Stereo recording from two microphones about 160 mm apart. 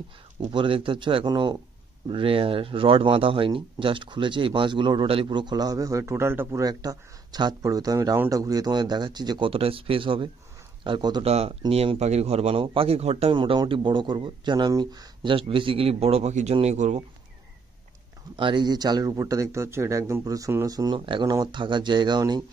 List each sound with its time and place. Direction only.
0.5 s a man's voice: 30° right (ahead or behind)
11.2 s a man's voice: 40° right (ahead or behind)
18.3 s speech: 30° right (ahead or behind)